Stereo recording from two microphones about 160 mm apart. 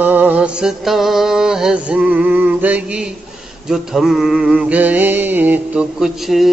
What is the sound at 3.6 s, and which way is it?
Mantra, 5° right (ahead or behind).